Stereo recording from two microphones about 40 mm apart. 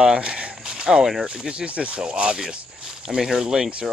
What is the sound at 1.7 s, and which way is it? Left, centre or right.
Speech, right.